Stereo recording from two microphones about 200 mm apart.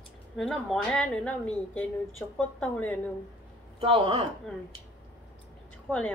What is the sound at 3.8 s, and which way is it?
Speech, 30° right (ahead or behind).